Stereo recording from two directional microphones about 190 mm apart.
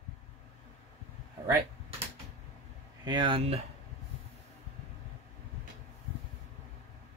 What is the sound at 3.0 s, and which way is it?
Speech, 25° right (ahead or behind).